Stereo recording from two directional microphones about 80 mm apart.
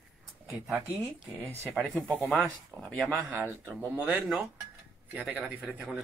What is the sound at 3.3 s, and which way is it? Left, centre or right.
Speech, right.